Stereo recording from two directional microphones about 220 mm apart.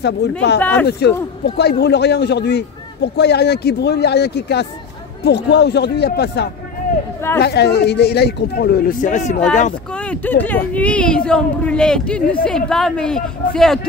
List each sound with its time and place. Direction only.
0.0 s a man's voice: 50° left (ahead or behind)
0.6 s speech: 10° left (ahead or behind)
0.8 s a man's voice: 45° left (ahead or behind)
9.9 s speech: 5° left (ahead or behind)